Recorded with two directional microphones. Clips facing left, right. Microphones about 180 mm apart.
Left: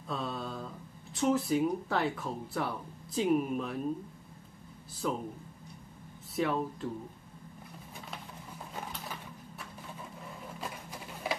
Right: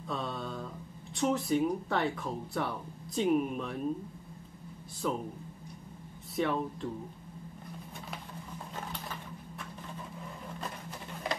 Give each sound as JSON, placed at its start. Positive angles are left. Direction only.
{"t": 0.1, "sound": "mantra", "side_deg": 0}
{"t": 1.1, "sound": "speech", "side_deg": 0}
{"t": 5.0, "sound": "speech", "side_deg": 0}
{"t": 6.3, "sound": "speech", "side_deg": 0}
{"t": 8.7, "sound": "a sound", "side_deg": 5}
{"t": 10.6, "sound": "printer", "side_deg": 5}